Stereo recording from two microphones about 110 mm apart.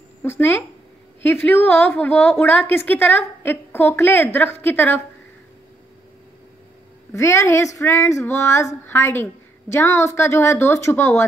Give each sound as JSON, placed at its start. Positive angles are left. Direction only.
{"t": 0.2, "sound": "a woman's voice", "side_deg": 20}
{"t": 7.1, "sound": "a woman's voice", "side_deg": 25}